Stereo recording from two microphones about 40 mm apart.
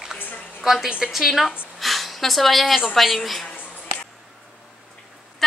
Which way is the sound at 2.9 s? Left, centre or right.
Centre.